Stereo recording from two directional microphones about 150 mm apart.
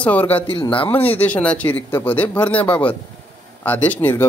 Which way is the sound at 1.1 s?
10° left (ahead or behind).